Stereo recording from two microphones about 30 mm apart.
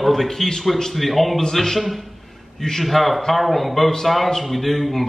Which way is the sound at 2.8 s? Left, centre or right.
Centre.